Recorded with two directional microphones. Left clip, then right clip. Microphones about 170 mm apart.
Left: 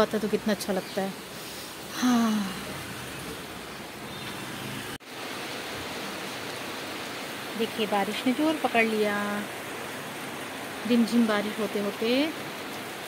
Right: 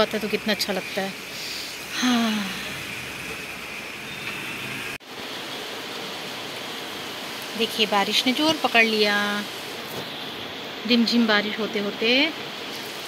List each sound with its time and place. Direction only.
0.0 s speech: 15° left (ahead or behind)
2.0 s speech: 10° left (ahead or behind)
7.8 s speech: 5° right (ahead or behind)
10.9 s speech: centre (ahead or behind)